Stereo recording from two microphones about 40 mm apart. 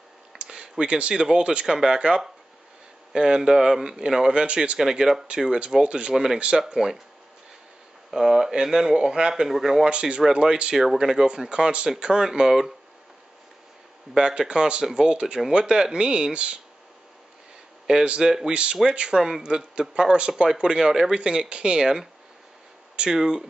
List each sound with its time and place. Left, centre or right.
0.4 s a sound: right
1.1 s speech: centre
1.4 s speech: right
4.3 s speech: right
6.1 s speech: centre
8.1 s speech: centre
9.8 s speech: right
14.1 s speech: centre
17.9 s speech: right
18.2 s speech: centre
18.5 s speech: right